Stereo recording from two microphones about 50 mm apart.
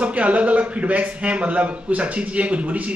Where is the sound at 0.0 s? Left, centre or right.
Right.